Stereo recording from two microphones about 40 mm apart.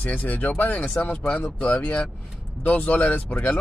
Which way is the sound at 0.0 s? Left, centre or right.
Left.